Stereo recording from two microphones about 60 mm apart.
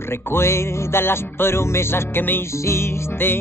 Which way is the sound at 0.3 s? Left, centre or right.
Left.